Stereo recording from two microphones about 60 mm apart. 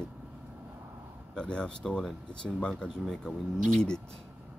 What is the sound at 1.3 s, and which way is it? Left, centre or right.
Speech, centre.